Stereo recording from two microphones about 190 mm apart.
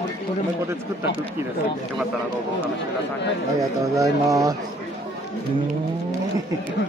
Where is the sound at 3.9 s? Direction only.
15° right (ahead or behind).